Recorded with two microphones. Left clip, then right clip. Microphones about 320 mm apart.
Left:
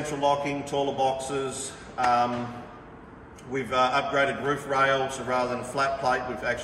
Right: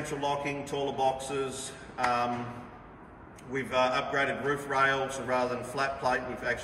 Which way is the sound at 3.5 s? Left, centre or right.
Centre.